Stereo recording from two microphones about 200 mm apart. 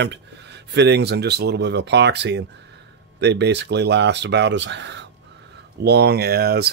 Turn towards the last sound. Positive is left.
turn(degrees=-50)  # may be behind; listen again after turning